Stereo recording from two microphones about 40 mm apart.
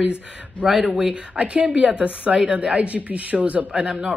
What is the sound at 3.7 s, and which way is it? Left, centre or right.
Speech, right.